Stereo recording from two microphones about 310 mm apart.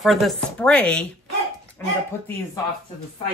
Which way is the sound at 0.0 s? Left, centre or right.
Centre.